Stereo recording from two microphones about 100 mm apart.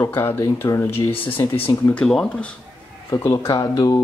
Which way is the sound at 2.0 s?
5° left (ahead or behind).